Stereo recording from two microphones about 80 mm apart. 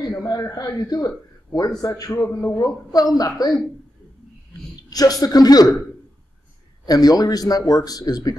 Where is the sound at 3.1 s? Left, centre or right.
Left.